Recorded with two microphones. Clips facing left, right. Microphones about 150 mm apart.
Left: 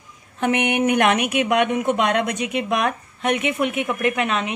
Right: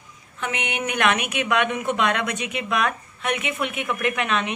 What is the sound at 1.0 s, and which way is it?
A woman's voice, 15° left (ahead or behind).